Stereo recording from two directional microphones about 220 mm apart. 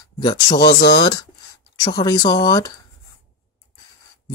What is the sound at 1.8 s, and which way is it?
Speech, 20° left (ahead or behind).